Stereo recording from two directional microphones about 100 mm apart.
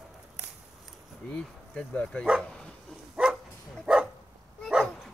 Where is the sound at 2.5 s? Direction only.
5° left (ahead or behind).